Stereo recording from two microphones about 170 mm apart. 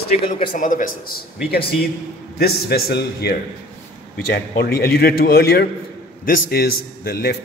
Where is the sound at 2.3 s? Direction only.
65° left (ahead or behind).